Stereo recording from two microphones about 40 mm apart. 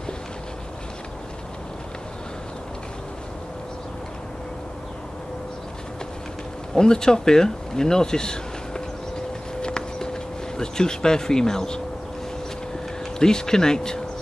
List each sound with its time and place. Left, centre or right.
6.7 s speech: centre
9.6 s a sound: centre
13.2 s speech: centre